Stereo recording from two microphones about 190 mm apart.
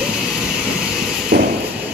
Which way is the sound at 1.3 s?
55° right (ahead or behind).